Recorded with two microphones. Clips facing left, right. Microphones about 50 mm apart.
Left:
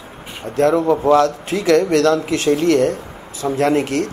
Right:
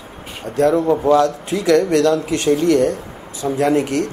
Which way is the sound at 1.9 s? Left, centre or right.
Centre.